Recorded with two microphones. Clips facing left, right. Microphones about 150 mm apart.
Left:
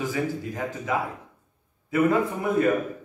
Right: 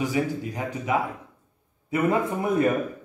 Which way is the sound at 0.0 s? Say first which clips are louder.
Right 2 dB; 15° right (ahead or behind).